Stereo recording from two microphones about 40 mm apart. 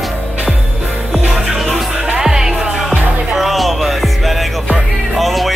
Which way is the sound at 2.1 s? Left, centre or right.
Centre.